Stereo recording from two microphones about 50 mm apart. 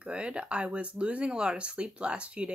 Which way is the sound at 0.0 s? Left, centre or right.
Right.